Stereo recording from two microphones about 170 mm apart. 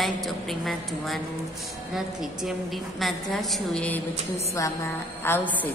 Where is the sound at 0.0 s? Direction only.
Centre (ahead or behind).